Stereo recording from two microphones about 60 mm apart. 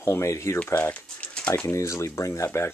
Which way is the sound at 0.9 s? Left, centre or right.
Left.